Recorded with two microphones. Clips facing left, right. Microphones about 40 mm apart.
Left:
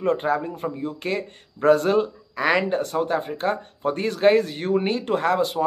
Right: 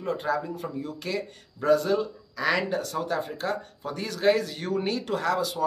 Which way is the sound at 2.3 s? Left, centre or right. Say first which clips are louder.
Left 5 dB; left.